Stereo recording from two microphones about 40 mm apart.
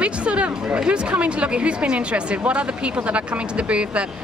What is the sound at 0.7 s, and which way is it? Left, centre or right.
Speech, right.